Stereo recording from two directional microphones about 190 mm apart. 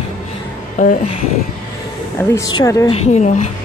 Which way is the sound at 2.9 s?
35° left (ahead or behind).